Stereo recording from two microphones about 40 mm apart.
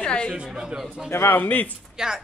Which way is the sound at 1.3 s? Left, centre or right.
Left.